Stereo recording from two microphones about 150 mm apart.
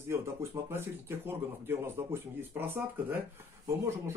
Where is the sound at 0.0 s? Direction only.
15° right (ahead or behind).